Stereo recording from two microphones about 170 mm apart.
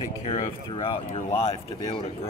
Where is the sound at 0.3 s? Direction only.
35° left (ahead or behind).